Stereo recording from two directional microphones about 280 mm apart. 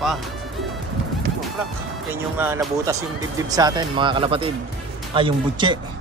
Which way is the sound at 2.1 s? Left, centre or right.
Centre.